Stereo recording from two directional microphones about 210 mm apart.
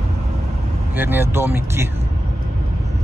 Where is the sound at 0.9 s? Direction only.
10° right (ahead or behind).